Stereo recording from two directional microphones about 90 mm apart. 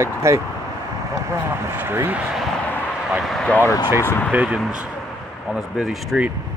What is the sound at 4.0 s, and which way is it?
Speech, 30° left (ahead or behind).